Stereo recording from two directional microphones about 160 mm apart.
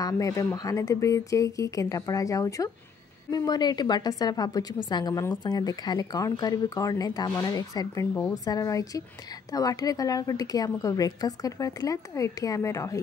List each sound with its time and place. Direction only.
0.0 s speech: 20° left (ahead or behind)